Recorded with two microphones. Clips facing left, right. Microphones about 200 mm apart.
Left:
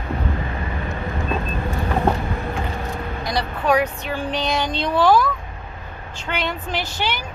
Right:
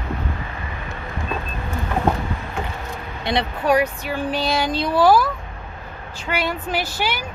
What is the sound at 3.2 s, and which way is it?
Vehicle, 25° right (ahead or behind).